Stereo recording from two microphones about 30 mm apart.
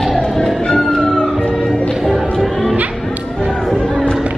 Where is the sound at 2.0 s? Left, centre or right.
Centre.